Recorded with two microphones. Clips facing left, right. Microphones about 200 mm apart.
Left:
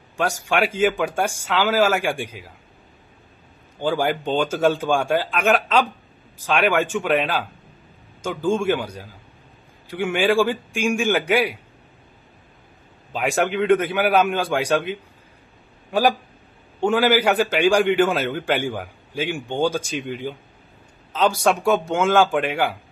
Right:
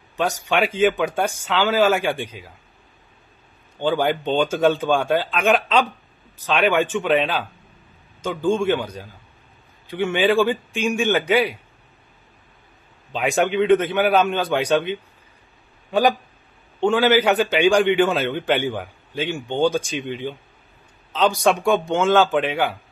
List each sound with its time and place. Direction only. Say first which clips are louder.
0.2 s speech: right 1 dB; 10° left (ahead or behind)
3.8 s speech: right 1 dB; 5° left (ahead or behind)
13.1 s speech: right 1 dB; centre (ahead or behind)